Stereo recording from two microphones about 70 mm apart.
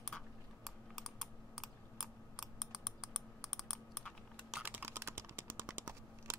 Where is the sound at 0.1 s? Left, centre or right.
Centre.